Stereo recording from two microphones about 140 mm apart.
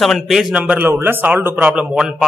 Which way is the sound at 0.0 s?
Centre (ahead or behind).